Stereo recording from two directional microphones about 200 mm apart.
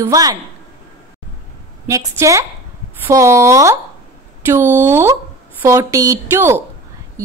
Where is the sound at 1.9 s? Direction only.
15° right (ahead or behind).